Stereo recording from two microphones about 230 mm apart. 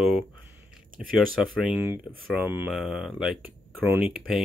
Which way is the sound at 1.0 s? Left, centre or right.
Centre.